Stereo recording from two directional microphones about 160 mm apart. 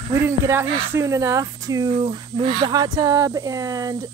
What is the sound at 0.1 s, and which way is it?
Speech, 15° right (ahead or behind).